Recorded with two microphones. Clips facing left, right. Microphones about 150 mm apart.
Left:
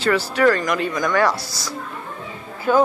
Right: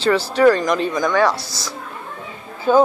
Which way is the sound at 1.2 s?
20° right (ahead or behind).